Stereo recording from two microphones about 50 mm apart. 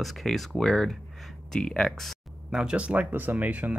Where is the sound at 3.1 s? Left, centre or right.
Right.